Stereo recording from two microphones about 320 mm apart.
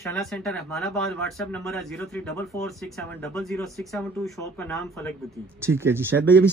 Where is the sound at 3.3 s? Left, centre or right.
Centre.